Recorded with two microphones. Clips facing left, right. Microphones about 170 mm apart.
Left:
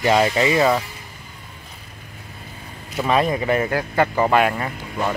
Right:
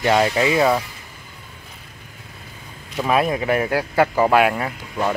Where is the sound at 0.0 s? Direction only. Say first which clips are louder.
Even; centre (ahead or behind).